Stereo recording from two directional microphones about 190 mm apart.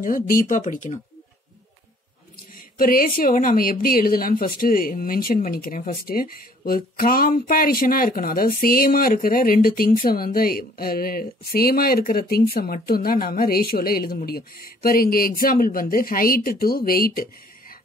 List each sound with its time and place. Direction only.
0.0 s a woman's voice: 45° left (ahead or behind)
2.8 s a woman's voice: 50° left (ahead or behind)